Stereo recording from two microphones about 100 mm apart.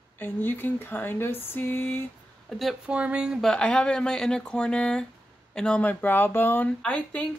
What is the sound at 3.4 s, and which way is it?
Speech, 5° left (ahead or behind).